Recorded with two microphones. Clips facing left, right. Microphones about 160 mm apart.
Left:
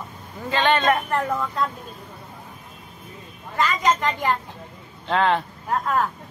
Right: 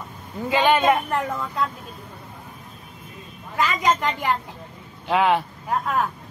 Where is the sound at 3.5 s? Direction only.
10° right (ahead or behind).